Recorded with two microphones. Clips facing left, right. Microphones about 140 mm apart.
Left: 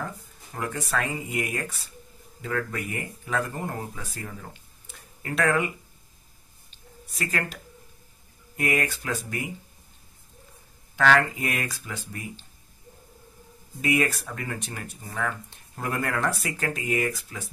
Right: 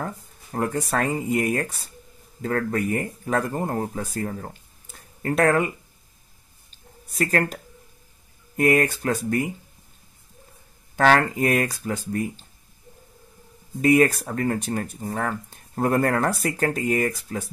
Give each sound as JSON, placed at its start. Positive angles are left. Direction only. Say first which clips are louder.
{"t": 0.0, "sound": "speech", "louder": "right 4 dB", "side_deg": -45}
{"t": 6.7, "sound": "a sound", "louder": "even", "side_deg": -45}
{"t": 8.5, "sound": "speech", "louder": "right 7 dB", "side_deg": -45}
{"t": 11.0, "sound": "speech", "louder": "right 3 dB", "side_deg": -40}
{"t": 13.7, "sound": "speech", "louder": "right 8 dB", "side_deg": -45}